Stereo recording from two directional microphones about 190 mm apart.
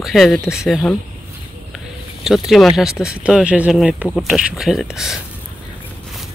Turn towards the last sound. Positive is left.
turn(degrees=0)  # may be behind; listen again after turning